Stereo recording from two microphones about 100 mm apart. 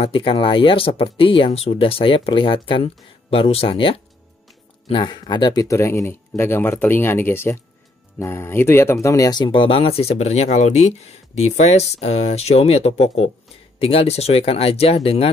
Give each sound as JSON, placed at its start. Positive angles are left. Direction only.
{"t": 0.0, "sound": "speech", "side_deg": 65}
{"t": 9.4, "sound": "speech", "side_deg": 60}
{"t": 13.7, "sound": "speech", "side_deg": 75}